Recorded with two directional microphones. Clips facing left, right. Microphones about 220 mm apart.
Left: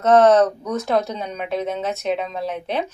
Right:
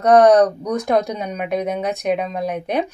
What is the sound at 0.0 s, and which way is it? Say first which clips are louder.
A woman's voice: right 2 dB; 15° right (ahead or behind).